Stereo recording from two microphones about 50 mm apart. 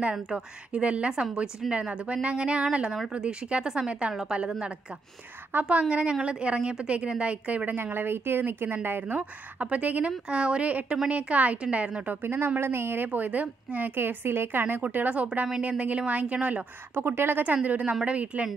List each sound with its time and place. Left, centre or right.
0.1 s a woman's voice: centre
7.7 s a woman's voice: right
9.0 s a woman's voice: right
12.2 s a woman's voice: right
16.9 s a woman's voice: right
17.6 s a woman's voice: right